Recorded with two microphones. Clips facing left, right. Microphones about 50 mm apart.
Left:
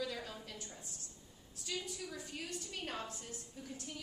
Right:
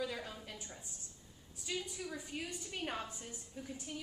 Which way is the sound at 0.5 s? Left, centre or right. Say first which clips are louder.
Even; centre.